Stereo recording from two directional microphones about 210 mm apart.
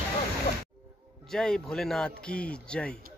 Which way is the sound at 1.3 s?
Centre (ahead or behind).